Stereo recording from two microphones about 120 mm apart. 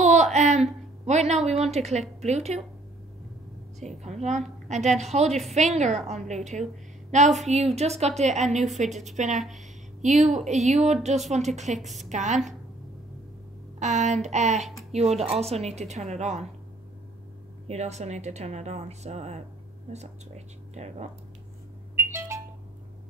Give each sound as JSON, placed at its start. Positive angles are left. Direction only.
{"t": 0.0, "sound": "a woman's voice", "side_deg": -75}
{"t": 3.8, "sound": "a woman's voice", "side_deg": -70}
{"t": 11.8, "sound": "a woman's voice", "side_deg": 0}
{"t": 12.1, "sound": "a woman's voice", "side_deg": -80}
{"t": 13.7, "sound": "a woman's voice", "side_deg": -80}
{"t": 17.6, "sound": "a woman's voice", "side_deg": -65}
{"t": 21.9, "sound": "a sound", "side_deg": -20}